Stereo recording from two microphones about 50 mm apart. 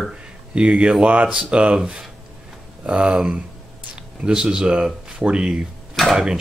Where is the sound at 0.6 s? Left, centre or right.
Right.